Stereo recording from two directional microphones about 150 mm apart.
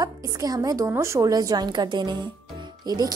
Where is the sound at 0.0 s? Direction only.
25° right (ahead or behind).